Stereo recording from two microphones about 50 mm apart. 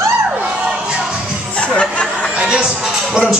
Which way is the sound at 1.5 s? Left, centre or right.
Left.